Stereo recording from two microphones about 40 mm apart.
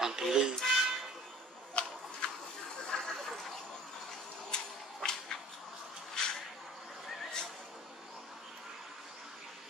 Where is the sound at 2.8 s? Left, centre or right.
Centre.